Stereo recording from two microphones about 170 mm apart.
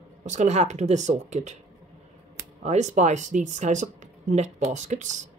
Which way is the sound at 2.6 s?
45° right (ahead or behind).